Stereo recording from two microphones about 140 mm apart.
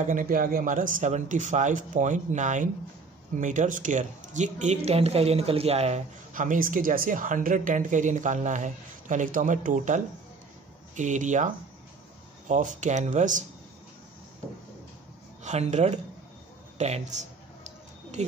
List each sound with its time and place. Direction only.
0.0 s speech: 70° right (ahead or behind)
15.4 s speech: 55° right (ahead or behind)